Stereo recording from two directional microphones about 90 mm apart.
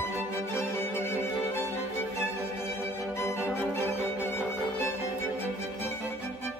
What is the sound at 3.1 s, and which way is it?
Music, 30° left (ahead or behind).